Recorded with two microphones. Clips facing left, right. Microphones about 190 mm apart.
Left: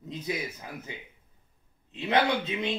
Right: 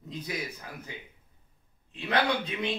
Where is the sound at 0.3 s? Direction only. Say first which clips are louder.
Left 4 dB; 20° left (ahead or behind).